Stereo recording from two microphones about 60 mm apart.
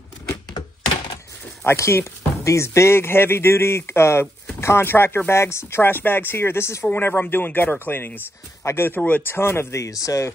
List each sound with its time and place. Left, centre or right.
1.8 s speech: left
6.9 s speech: left